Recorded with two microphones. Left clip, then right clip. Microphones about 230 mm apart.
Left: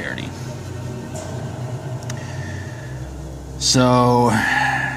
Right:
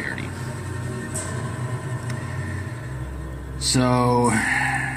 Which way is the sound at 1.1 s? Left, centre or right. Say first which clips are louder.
Left 2 dB; right.